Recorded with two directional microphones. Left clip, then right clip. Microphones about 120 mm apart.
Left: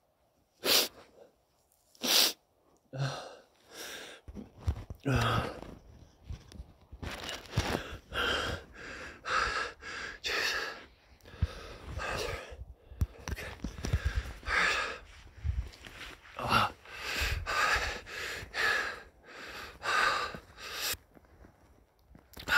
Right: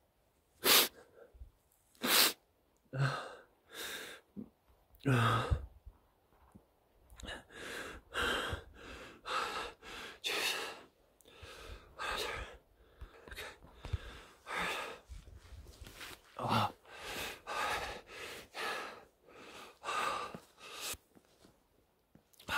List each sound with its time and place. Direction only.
0.6 s sneeze: 15° right (ahead or behind)
2.0 s sneeze: 10° right (ahead or behind)
2.9 s a sound: 10° right (ahead or behind)
5.0 s speech: 10° right (ahead or behind)
7.8 s gasp: 5° right (ahead or behind)
13.1 s a sound: centre (ahead or behind)
15.8 s biting: 55° left (ahead or behind)
16.3 s gasp: 15° right (ahead or behind)